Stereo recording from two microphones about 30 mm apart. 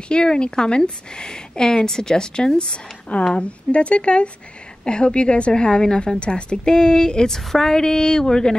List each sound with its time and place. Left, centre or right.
0.1 s speech: left
3.3 s a woman's voice: left
6.1 s speech: left
7.2 s speech: centre